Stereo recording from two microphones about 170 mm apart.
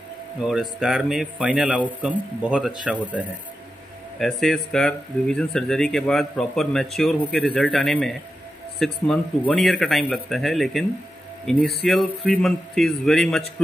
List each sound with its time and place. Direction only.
0.5 s speech: centre (ahead or behind)
4.2 s speech: centre (ahead or behind)